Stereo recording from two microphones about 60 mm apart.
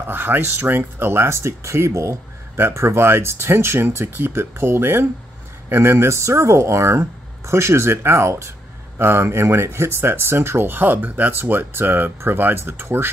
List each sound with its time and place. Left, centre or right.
0.0 s speech: right
2.5 s speech: right